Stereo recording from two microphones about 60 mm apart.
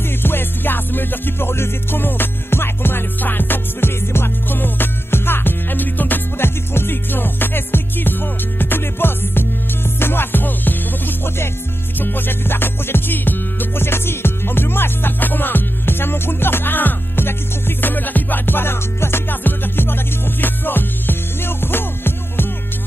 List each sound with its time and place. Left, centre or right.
0.2 s music: left